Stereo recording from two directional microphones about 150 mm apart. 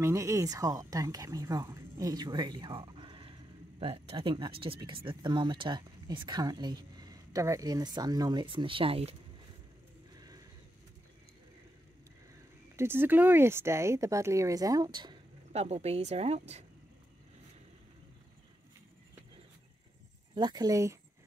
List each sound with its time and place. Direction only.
0.0 s speech: 20° right (ahead or behind); by 9.1 s 40° right (ahead or behind)
12.7 s speech: 15° right (ahead or behind)
15.5 s speech: 45° right (ahead or behind)
20.3 s speech: 30° right (ahead or behind)